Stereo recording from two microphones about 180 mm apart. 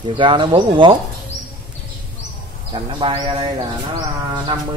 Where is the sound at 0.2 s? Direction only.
25° right (ahead or behind).